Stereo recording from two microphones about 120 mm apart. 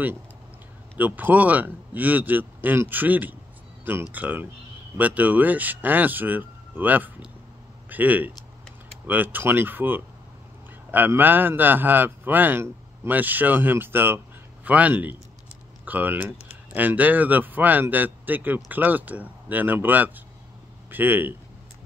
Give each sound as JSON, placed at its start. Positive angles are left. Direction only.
{"t": 0.9, "sound": "speech", "side_deg": -15}